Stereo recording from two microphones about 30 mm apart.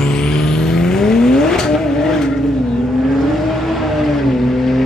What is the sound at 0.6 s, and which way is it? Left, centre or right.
Vehicle, centre.